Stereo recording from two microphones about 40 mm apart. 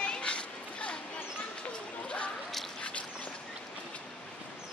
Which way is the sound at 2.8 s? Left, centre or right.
Left.